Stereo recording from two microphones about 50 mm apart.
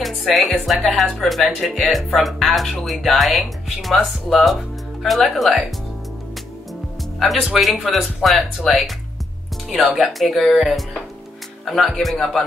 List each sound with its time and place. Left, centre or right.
0.3 s speech: centre
1.8 s speech: centre
7.2 s speech: centre